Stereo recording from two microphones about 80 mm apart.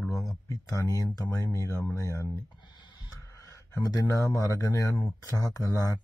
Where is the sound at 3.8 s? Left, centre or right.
Left.